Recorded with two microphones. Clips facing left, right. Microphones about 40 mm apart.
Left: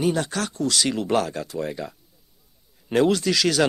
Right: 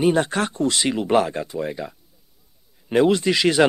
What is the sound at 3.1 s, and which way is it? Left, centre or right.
Speech, right.